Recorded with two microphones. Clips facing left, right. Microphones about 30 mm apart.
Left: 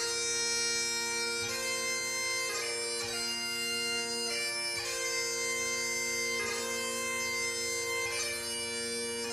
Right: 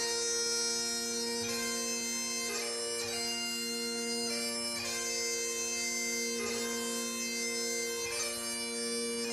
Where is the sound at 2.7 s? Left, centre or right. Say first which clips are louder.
Left 1 dB; left.